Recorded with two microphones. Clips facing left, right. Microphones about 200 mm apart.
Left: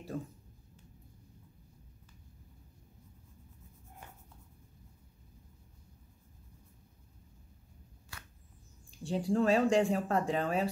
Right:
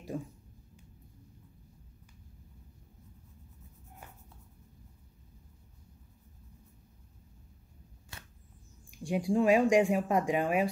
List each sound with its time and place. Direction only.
8.1 s arrow: 20° right (ahead or behind)
8.9 s speech: 15° right (ahead or behind)